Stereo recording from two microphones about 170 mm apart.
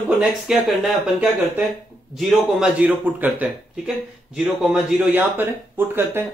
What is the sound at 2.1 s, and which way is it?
Speech, 5° right (ahead or behind).